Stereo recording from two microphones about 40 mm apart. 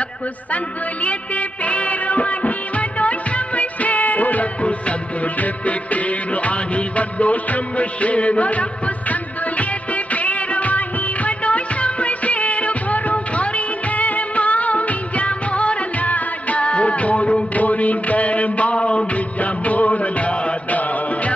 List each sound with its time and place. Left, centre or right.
1.0 s music of bollywood: left
4.6 s music: left
19.4 s music: left